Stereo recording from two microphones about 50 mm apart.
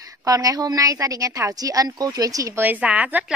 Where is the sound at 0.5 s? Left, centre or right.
Right.